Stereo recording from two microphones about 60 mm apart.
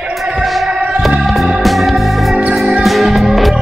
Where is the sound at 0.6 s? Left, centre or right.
Centre.